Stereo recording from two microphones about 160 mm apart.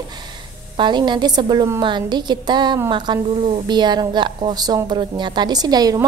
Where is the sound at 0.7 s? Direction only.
30° right (ahead or behind).